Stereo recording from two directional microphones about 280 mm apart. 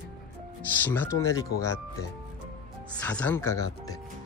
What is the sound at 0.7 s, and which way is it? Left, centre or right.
Speech, centre.